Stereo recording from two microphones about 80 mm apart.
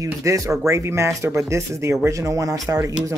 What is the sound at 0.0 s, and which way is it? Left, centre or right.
Speech, right.